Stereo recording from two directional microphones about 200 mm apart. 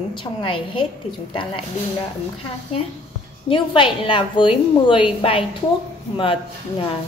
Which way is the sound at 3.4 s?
25° left (ahead or behind).